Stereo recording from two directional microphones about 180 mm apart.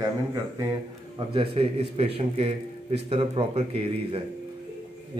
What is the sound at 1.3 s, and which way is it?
A man's voice, 30° right (ahead or behind).